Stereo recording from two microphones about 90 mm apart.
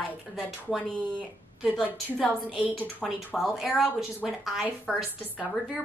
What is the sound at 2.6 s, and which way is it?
Speech, 20° right (ahead or behind).